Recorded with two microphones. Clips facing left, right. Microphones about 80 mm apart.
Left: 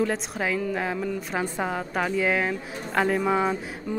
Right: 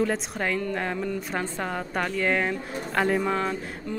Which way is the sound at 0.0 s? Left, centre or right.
Centre.